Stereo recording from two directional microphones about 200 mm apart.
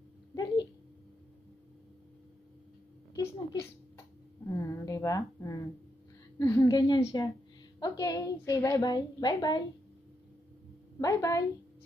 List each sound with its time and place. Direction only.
0.3 s a sound: 20° left (ahead or behind)
4.5 s a woman's voice: 15° left (ahead or behind)
11.0 s a woman's voice: 15° left (ahead or behind)